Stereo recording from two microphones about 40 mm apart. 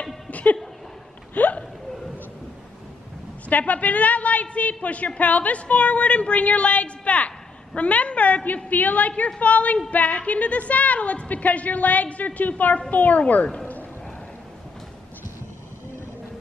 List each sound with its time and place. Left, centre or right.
0.0 s a sound: left
1.3 s hiccup: left
3.4 s a woman's voice: left